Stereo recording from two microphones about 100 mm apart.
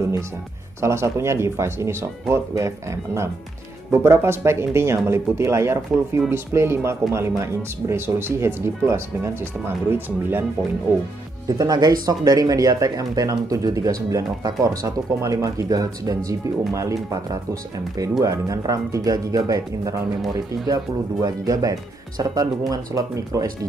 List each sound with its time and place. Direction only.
0.7 s speech: 30° right (ahead or behind)
11.4 s speech: 35° right (ahead or behind)